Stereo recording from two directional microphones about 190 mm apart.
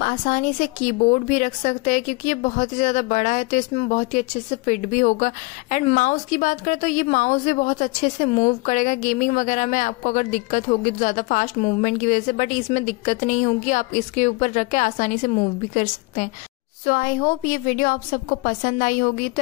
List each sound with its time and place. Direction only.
0.0 s a woman's voice: 45° left (ahead or behind)